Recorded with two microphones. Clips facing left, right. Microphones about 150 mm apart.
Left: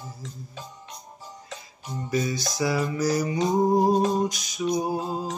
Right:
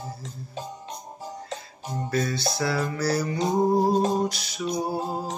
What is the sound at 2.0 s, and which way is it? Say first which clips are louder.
Music: even; 15° left (ahead or behind).